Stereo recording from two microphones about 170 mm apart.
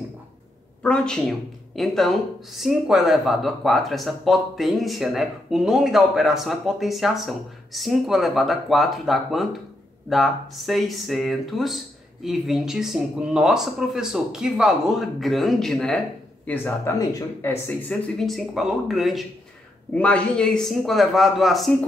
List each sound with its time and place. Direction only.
0.8 s speech: 5° left (ahead or behind)